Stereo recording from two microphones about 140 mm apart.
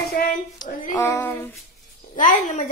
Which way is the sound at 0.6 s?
30° left (ahead or behind).